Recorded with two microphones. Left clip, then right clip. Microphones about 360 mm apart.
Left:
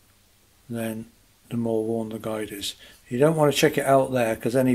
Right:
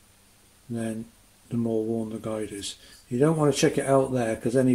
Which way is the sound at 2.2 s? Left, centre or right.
Left.